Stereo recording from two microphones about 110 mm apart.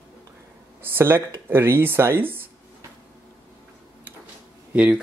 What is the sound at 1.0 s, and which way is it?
Speech, 20° right (ahead or behind).